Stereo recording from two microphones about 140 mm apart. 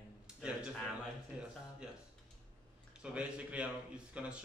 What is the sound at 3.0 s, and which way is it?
Speech, 10° right (ahead or behind).